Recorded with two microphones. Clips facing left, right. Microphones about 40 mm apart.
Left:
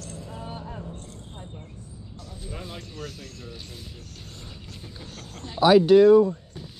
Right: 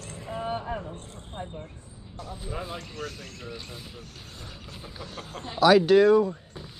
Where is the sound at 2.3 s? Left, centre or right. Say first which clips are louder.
Right 3 dB; centre.